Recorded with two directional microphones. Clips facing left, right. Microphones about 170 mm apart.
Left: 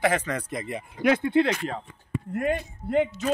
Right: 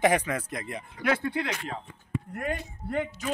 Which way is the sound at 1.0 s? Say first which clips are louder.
Left 7 dB; 20° left (ahead or behind).